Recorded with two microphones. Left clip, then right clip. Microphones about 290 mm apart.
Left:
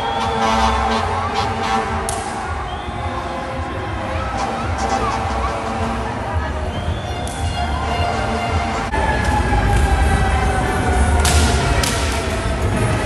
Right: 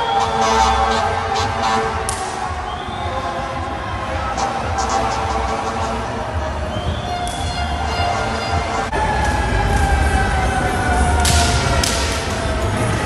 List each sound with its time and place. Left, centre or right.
0.2 s music: centre